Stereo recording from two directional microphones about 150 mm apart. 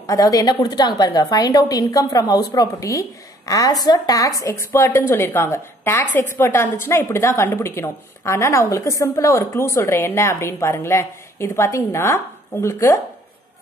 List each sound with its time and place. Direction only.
0.0 s a woman's voice: 25° left (ahead or behind)